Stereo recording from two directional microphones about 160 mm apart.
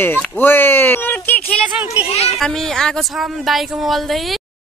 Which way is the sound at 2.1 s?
40° left (ahead or behind).